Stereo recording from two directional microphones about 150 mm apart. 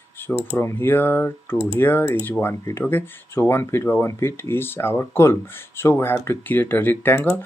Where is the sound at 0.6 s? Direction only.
15° left (ahead or behind).